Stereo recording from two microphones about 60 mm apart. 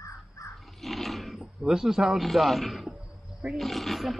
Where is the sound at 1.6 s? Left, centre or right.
Centre.